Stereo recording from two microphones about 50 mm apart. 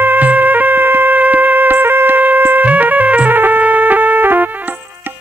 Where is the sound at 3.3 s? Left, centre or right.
Right.